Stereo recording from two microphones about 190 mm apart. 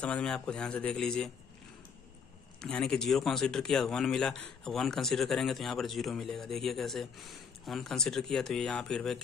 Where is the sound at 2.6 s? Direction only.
5° left (ahead or behind).